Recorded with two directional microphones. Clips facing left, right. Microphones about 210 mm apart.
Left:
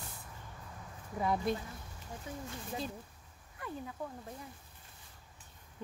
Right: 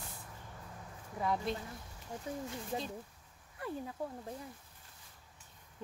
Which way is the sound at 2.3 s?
35° right (ahead or behind).